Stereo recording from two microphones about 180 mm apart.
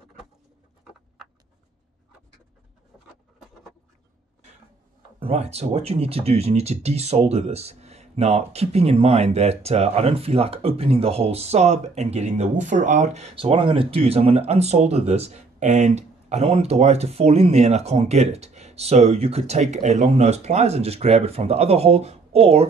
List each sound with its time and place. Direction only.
5.2 s speech: 35° right (ahead or behind)